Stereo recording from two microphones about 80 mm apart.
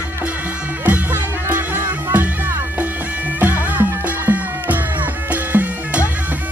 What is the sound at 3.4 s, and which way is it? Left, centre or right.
Music, right.